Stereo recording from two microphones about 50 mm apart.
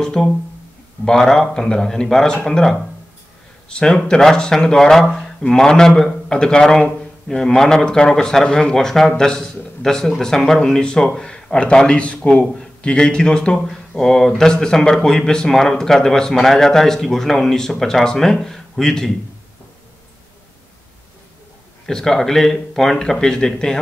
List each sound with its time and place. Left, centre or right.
0.0 s a sound: centre
1.0 s a man's voice: centre
21.8 s a man's voice: centre